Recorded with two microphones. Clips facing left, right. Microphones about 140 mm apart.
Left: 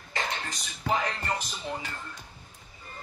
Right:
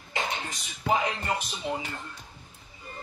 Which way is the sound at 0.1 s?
15° right (ahead or behind).